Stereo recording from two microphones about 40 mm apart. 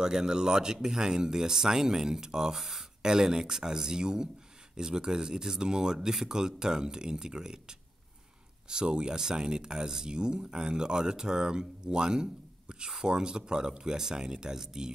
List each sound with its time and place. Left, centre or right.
0.0 s speech: centre